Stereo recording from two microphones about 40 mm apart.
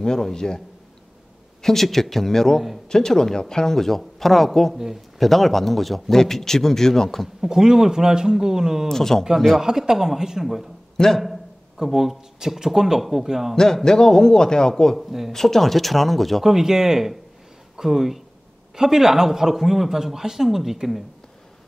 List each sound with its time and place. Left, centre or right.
0.0 s speech: centre
1.6 s speech: centre
7.4 s a man's voice: centre
8.8 s speech: centre
9.6 s a man's voice: centre
11.0 s speech: centre
11.7 s a man's voice: centre
13.8 s speech: centre
15.0 s speech: centre
15.3 s speech: centre
16.4 s a man's voice: centre